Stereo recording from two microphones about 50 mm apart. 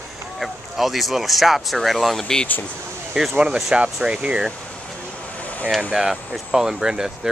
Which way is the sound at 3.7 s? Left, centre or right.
Right.